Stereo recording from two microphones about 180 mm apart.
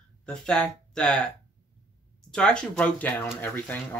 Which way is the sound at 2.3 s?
5° left (ahead or behind).